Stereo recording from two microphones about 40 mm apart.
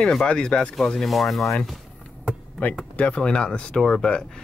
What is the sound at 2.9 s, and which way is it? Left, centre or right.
Speech, left.